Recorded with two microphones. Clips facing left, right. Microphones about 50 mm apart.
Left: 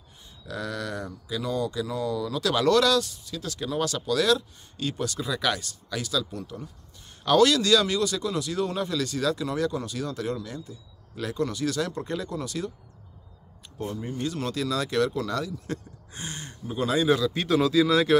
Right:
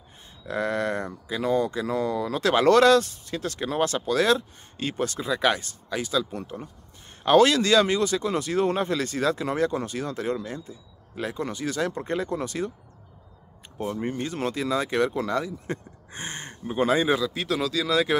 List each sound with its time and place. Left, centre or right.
0.5 s speech: right
13.8 s speech: right
17.3 s speech: centre